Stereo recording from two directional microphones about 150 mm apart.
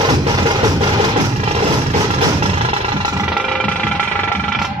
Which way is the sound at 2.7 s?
35° right (ahead or behind).